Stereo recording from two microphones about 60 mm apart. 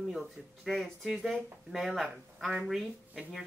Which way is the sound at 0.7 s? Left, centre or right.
Centre.